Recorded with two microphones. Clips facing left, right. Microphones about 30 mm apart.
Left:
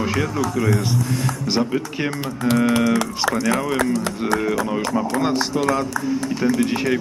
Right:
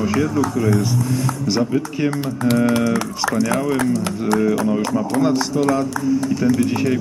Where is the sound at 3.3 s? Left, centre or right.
Centre.